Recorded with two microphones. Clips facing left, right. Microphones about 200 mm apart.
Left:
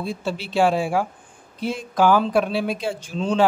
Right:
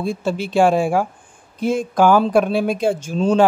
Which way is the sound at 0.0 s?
50° right (ahead or behind).